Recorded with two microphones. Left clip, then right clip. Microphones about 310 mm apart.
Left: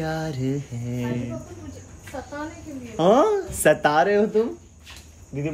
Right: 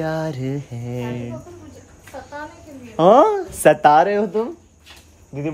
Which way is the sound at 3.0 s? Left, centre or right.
Right.